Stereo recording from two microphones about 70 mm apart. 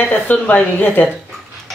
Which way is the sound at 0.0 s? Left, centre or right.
Left.